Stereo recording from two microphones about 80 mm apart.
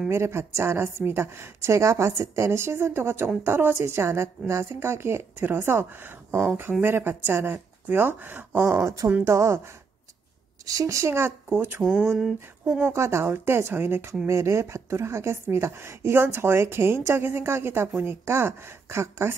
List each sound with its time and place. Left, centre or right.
0.1 s a woman's voice: right
10.6 s a woman's voice: right
11.8 s a sound: centre
12.8 s a woman's voice: right